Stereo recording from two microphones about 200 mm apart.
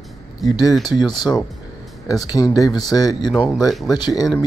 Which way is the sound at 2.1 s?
20° left (ahead or behind).